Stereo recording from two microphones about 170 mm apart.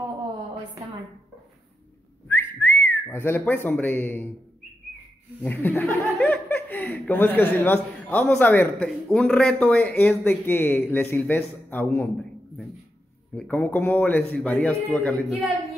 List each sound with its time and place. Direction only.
2.2 s whistling: 10° left (ahead or behind)
5.4 s a man's voice: 10° left (ahead or behind)
13.3 s a man's voice: 10° left (ahead or behind)